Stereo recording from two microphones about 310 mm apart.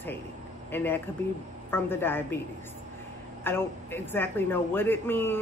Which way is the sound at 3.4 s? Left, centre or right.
Centre.